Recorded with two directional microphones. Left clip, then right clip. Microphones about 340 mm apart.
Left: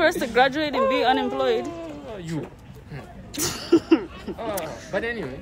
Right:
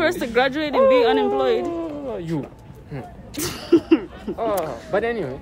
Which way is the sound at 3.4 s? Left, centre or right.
Centre.